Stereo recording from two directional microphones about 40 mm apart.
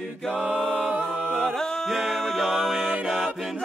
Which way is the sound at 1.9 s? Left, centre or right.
Centre.